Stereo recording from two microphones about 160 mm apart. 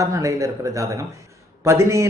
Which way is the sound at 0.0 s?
20° right (ahead or behind).